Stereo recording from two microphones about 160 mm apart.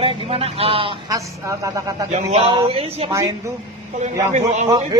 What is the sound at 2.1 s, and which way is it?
A man's voice, 40° right (ahead or behind).